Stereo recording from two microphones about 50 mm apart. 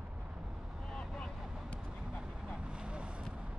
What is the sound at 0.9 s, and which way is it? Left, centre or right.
Vehicle, centre.